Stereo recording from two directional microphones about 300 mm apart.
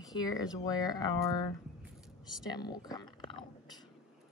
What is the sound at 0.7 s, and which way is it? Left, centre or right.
Speech, centre.